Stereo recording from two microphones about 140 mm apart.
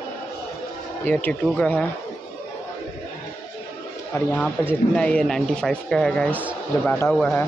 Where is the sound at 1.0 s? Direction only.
10° left (ahead or behind).